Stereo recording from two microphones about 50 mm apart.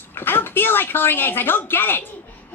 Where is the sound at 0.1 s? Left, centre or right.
Left.